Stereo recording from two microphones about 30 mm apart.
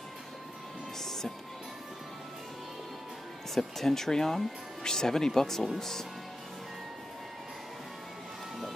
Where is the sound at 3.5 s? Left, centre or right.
Centre.